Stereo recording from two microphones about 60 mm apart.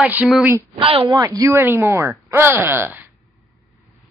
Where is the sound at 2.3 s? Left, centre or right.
Right.